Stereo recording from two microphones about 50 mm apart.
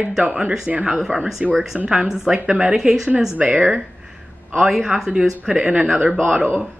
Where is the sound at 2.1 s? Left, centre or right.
Centre.